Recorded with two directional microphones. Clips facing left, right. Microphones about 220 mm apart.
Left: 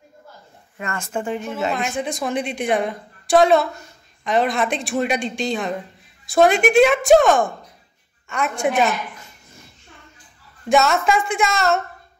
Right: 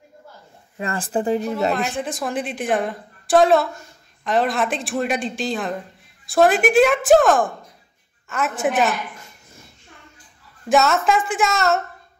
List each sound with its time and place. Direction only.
0.7 s speech: 30° right (ahead or behind)
1.7 s a woman's voice: centre (ahead or behind)
10.7 s a woman's voice: centre (ahead or behind)